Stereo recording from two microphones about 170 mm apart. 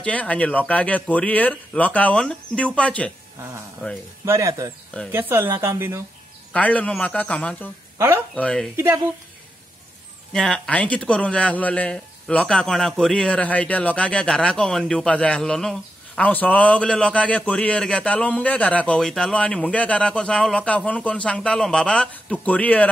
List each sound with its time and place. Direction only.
0.0 s a man's voice: 10° left (ahead or behind)
3.3 s speech: 15° right (ahead or behind)
6.5 s a man's voice: 10° left (ahead or behind)
8.7 s speech: 15° right (ahead or behind)
10.3 s a man's voice: 5° left (ahead or behind)